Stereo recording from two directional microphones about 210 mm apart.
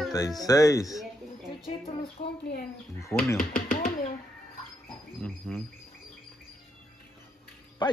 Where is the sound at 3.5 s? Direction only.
40° left (ahead or behind).